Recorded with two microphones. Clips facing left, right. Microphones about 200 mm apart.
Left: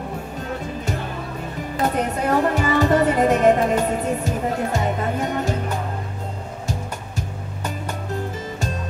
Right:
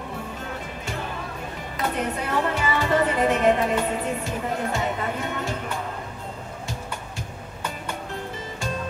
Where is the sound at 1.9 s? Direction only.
45° left (ahead or behind).